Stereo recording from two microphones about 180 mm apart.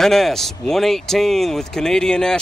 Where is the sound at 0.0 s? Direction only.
Centre (ahead or behind).